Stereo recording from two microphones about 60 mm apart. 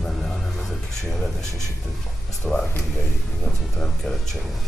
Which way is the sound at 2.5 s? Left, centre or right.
Left.